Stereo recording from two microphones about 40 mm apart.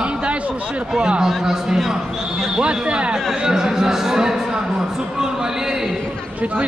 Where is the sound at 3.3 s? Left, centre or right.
Centre.